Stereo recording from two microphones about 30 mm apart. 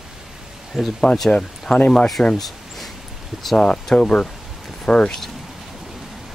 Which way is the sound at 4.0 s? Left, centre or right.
Left.